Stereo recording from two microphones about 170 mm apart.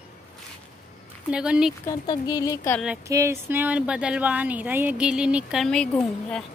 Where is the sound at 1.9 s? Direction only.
20° left (ahead or behind).